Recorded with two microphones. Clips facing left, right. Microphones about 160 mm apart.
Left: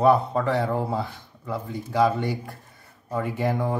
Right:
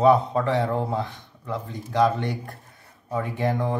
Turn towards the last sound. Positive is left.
turn(degrees=5)  # may be behind; listen again after turning